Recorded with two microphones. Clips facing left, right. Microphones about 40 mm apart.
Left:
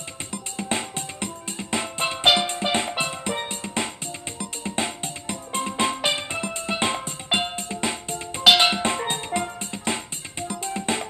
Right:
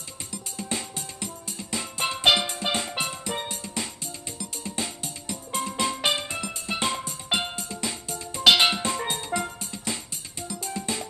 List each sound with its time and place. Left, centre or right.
0.3 s music: left
2.1 s music: centre
2.6 s music: left
7.5 s music: left
8.5 s music: centre
8.8 s music: left